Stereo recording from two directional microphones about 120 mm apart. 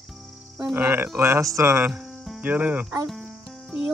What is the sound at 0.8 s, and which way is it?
Speech, 15° right (ahead or behind).